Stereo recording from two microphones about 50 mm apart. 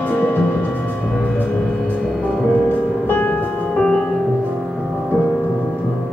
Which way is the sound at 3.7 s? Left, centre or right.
Left.